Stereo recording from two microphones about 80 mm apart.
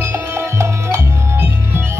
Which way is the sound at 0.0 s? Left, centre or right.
Right.